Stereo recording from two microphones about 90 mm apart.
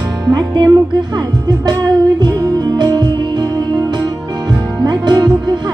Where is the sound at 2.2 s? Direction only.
45° right (ahead or behind).